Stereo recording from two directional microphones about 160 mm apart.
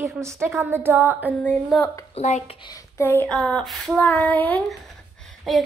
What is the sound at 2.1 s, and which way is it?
Speech, 45° left (ahead or behind).